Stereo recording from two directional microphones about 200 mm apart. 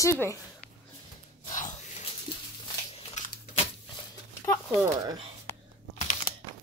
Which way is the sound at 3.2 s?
35° left (ahead or behind).